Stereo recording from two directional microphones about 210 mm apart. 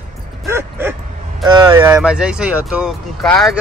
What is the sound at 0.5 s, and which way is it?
Bow-wow, 10° right (ahead or behind).